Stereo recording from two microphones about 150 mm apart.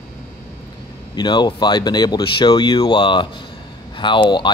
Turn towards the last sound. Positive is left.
turn(degrees=30)  # may be behind; listen again after turning